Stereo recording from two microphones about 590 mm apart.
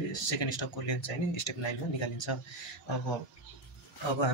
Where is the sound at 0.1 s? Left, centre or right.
Left.